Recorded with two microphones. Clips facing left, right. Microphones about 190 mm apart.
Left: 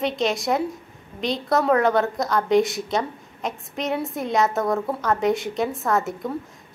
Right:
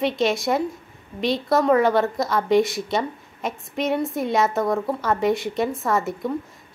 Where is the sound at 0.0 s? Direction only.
Centre (ahead or behind).